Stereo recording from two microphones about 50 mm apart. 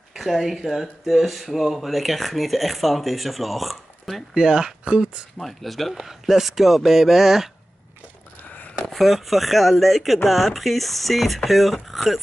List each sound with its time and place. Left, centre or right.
0.1 s speech: centre
4.3 s speech: centre
5.4 s speech: centre
8.5 s a sound: left
8.8 s speech: centre